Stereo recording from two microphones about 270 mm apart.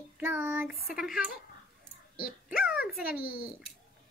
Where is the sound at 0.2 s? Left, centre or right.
Centre.